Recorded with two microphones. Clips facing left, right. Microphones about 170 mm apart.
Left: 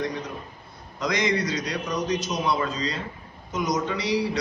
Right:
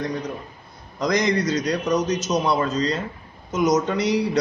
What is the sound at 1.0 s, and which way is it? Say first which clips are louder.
A man's voice: right 4 dB; 40° right (ahead or behind).